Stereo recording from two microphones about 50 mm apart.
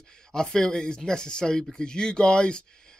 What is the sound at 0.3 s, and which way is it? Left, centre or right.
Speech, centre.